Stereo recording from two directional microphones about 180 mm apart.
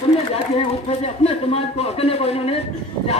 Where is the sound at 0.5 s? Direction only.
35° left (ahead or behind).